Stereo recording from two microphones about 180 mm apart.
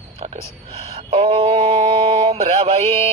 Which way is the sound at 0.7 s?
35° right (ahead or behind).